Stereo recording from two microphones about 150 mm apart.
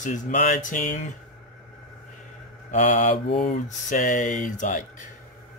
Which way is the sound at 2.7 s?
55° left (ahead or behind).